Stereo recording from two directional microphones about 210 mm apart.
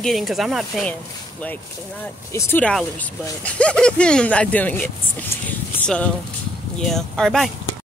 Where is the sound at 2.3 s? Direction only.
5° left (ahead or behind).